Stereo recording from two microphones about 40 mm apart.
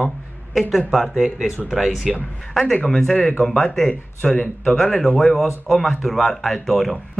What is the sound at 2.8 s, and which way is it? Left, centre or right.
Speech, centre.